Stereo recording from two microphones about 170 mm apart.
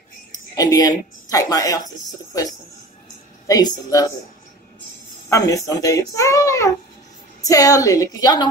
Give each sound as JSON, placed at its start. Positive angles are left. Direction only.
{"t": 0.3, "sound": "a woman's voice", "side_deg": 20}
{"t": 3.4, "sound": "a child's voice", "side_deg": 25}
{"t": 5.3, "sound": "a child's voice", "side_deg": 20}